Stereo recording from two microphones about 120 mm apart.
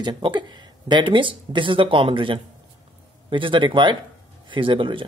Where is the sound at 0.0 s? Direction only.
40° right (ahead or behind).